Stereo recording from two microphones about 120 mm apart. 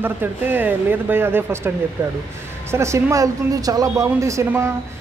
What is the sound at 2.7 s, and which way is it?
Speech, 25° right (ahead or behind).